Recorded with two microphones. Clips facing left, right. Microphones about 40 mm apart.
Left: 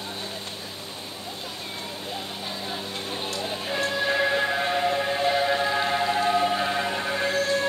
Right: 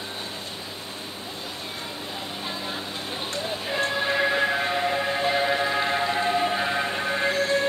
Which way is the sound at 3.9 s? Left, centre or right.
Centre.